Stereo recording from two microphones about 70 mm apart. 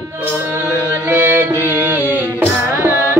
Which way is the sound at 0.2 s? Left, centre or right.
Right.